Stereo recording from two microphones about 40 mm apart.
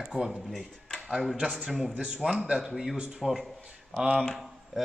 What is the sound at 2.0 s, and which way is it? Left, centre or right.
Speech, right.